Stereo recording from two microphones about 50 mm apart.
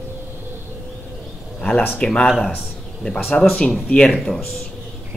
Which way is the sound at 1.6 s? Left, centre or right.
Left.